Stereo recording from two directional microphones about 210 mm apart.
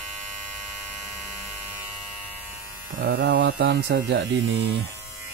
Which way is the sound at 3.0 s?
45° right (ahead or behind).